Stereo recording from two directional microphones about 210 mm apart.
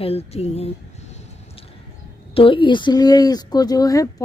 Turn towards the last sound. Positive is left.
turn(degrees=15)  # may be behind; listen again after turning